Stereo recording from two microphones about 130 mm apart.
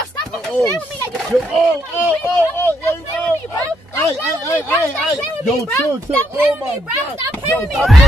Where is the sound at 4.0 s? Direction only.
25° left (ahead or behind).